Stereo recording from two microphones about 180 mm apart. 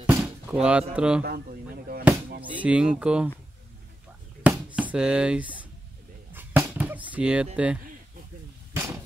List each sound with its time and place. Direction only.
0.0 s a sound: 5° right (ahead or behind)
1.2 s speech: 60° right (ahead or behind)
2.6 s speech: 5° right (ahead or behind)
4.4 s a sound: 10° right (ahead or behind)
6.3 s music: 10° right (ahead or behind)
7.5 s speech: 5° right (ahead or behind)